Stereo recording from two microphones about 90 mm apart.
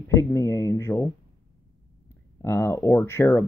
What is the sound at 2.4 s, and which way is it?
Speech, 25° left (ahead or behind).